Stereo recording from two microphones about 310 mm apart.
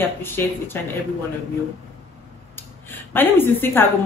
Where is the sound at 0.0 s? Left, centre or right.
Centre.